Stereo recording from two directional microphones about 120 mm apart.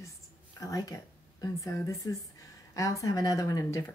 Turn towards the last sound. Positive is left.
turn(degrees=30)  # may be behind; listen again after turning